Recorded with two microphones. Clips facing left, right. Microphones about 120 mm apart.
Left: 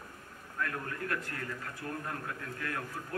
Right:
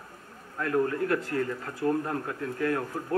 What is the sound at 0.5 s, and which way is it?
Speech, 30° right (ahead or behind).